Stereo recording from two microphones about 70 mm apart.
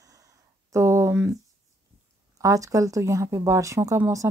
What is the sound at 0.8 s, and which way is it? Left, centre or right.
Speech, right.